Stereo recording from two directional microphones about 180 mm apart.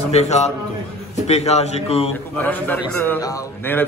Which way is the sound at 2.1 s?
10° left (ahead or behind).